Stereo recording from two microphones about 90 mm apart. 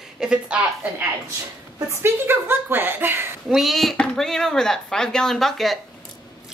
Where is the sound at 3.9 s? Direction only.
10° left (ahead or behind).